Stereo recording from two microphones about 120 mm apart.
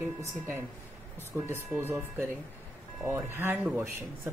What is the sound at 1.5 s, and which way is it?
Speech, 20° right (ahead or behind).